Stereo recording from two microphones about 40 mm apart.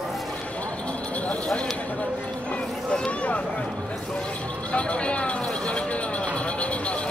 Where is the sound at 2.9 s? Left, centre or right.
Left.